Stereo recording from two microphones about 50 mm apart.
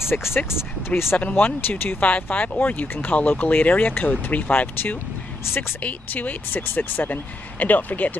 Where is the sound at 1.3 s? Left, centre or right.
Left.